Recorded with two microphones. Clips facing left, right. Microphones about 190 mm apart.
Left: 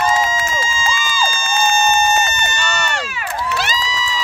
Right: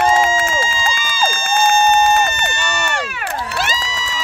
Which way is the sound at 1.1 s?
50° right (ahead or behind).